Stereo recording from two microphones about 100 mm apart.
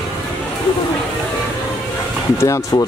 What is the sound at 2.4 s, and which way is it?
Speech, 30° left (ahead or behind).